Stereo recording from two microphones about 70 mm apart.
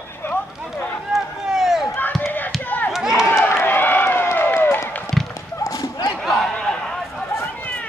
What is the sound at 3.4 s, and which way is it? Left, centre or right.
Run, left.